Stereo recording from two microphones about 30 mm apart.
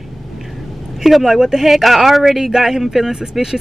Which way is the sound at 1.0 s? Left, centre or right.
Centre.